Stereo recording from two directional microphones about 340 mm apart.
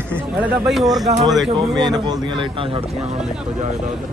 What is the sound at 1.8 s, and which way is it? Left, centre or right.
A man's voice, centre.